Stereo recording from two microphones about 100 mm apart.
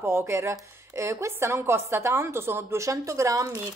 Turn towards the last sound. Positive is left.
turn(degrees=-30)  # may be behind; listen again after turning